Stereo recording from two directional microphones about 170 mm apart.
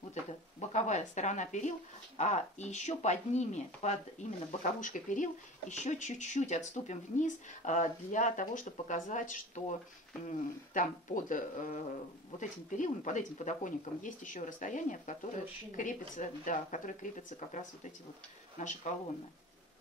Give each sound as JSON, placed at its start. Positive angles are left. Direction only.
{"t": 0.1, "sound": "speech", "side_deg": 40}